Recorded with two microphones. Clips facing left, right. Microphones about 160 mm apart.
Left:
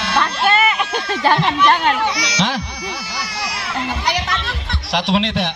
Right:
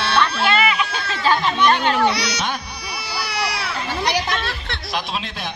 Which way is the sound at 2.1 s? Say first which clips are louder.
Right 1 dB; 60° right (ahead or behind).